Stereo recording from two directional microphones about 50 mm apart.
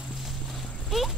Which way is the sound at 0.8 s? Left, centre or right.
Centre.